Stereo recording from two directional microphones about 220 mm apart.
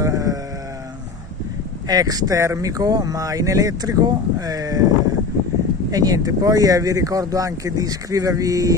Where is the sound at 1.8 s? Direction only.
15° right (ahead or behind).